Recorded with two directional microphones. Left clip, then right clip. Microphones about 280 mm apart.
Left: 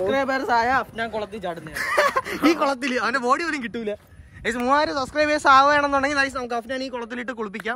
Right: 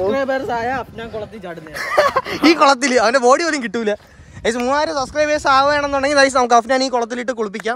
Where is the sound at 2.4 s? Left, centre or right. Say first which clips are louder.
Right 10 dB; right.